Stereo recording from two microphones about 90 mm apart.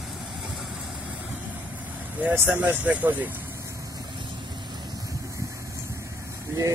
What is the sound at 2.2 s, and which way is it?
Speech, 20° right (ahead or behind).